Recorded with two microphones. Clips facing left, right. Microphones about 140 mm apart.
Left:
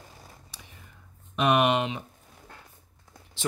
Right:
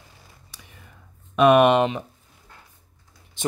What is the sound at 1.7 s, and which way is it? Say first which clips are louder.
Speech: right 7 dB; 55° right (ahead or behind).